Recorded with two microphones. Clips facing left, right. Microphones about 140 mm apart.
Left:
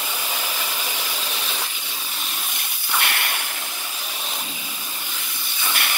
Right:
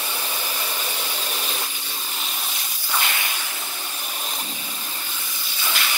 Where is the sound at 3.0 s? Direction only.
65° left (ahead or behind).